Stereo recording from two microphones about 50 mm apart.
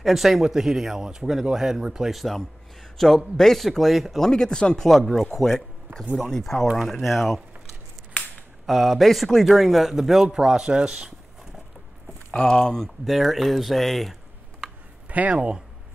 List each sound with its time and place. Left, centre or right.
0.0 s a man's voice: centre
4.2 s speech: centre
8.6 s a man's voice: centre
12.3 s speech: centre
13.1 s speech: centre
15.0 s speech: right